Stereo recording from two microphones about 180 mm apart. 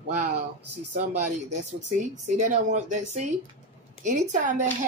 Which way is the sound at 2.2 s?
40° right (ahead or behind).